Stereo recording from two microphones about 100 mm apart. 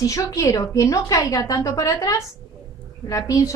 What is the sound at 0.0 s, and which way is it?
A woman's voice, 35° left (ahead or behind).